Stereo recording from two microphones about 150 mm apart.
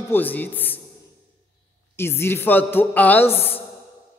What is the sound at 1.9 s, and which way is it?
A woman's voice, 15° left (ahead or behind).